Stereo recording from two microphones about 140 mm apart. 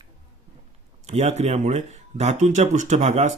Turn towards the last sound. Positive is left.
turn(degrees=-50)  # may be behind; listen again after turning